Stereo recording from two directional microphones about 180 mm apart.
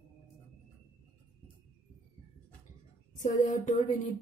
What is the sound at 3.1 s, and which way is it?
Speech, 45° left (ahead or behind).